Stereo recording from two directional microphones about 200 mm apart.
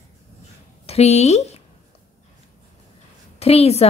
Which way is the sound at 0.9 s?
35° left (ahead or behind).